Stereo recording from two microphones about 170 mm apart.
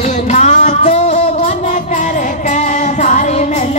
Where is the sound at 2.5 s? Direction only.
45° left (ahead or behind).